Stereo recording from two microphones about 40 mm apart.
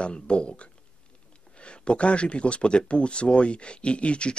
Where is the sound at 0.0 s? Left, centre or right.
Left.